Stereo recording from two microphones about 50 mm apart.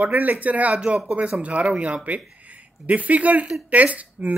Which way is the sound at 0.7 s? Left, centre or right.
Centre.